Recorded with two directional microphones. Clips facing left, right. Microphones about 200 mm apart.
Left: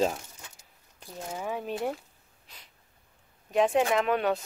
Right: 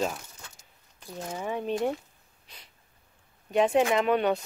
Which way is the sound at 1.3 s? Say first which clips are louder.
Right 3 dB; 5° left (ahead or behind).